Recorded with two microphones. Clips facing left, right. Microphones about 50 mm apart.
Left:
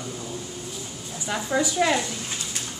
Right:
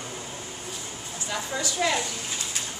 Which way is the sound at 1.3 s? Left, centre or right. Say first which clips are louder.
Left 6 dB; centre.